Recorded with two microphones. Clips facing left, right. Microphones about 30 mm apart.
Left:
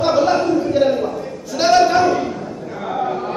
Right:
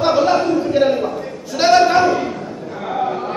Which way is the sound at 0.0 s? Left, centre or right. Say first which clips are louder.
Right 1 dB; centre.